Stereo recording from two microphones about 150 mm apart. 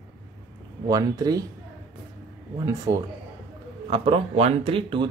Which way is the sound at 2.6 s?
25° right (ahead or behind).